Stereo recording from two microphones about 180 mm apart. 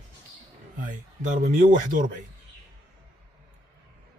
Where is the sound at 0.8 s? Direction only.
45° right (ahead or behind).